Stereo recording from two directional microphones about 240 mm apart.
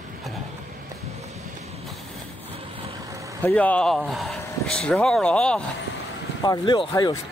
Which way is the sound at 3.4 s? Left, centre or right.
Centre.